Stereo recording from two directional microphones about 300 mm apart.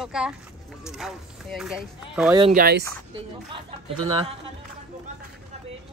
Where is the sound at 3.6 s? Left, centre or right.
Centre.